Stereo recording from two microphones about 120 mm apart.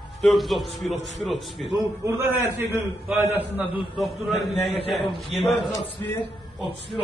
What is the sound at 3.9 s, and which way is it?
A man's voice, centre (ahead or behind).